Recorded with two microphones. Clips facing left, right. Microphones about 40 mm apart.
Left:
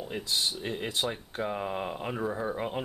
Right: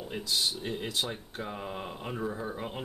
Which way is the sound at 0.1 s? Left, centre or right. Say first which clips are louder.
Even; centre.